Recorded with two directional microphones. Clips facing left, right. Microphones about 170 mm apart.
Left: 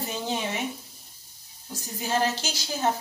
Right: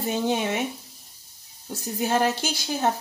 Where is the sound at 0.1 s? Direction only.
55° right (ahead or behind).